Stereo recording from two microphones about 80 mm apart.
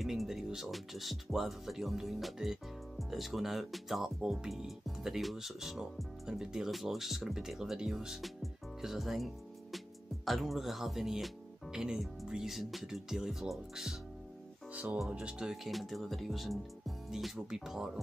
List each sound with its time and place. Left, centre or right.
0.0 s speech: centre
14.7 s speech: centre